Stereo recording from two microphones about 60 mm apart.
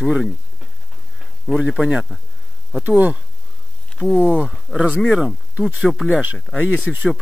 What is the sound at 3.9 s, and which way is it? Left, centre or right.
Speech, centre.